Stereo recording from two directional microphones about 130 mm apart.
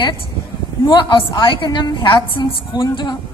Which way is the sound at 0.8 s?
40° left (ahead or behind).